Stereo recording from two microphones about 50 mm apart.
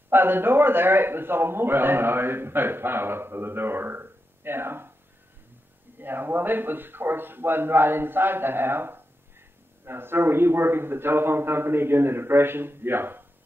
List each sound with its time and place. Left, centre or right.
0.1 s a man's voice: right
5.9 s a man's voice: right